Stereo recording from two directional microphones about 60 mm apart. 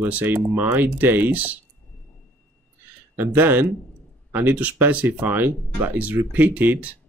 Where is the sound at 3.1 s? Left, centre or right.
Right.